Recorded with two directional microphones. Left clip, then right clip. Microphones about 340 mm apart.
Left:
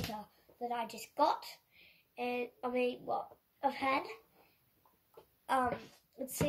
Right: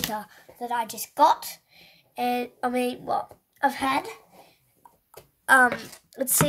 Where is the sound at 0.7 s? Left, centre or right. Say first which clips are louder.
Right 12 dB; right.